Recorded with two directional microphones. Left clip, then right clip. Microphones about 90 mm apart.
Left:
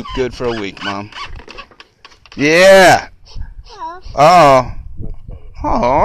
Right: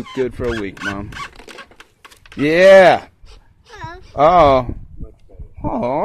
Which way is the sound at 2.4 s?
35° right (ahead or behind).